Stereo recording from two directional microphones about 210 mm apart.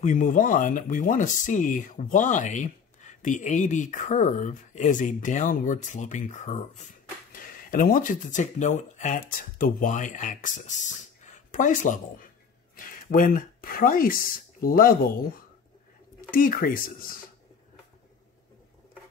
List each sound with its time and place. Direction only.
0.0 s speech: 35° left (ahead or behind)
16.2 s speech: 40° left (ahead or behind)